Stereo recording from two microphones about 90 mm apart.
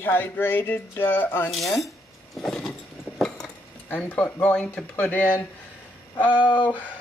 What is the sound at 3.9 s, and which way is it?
Speech, 15° left (ahead or behind).